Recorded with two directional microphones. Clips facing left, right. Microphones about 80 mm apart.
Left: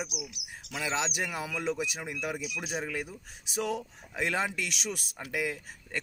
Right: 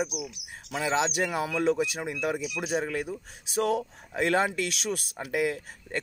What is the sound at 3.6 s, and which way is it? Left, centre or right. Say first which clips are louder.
Speech: right 6 dB; right.